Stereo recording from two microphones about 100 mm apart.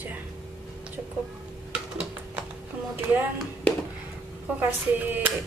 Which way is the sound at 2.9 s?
20° right (ahead or behind).